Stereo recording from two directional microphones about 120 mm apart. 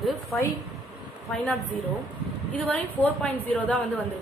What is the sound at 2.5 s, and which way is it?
A woman's voice, 10° left (ahead or behind).